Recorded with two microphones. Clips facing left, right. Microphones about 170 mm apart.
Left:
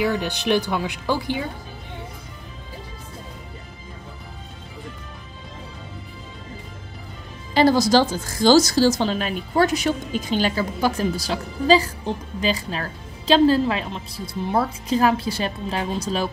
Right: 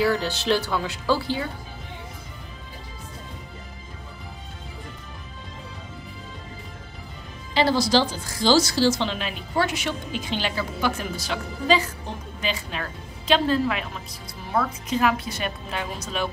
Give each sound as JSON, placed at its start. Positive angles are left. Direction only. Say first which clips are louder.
{"t": 0.0, "sound": "speech", "louder": "even", "side_deg": 15}
{"t": 7.5, "sound": "a woman's voice", "louder": "left 4 dB", "side_deg": 45}